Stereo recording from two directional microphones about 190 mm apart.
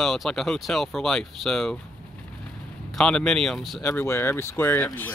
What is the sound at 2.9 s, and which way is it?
Speech, 5° left (ahead or behind).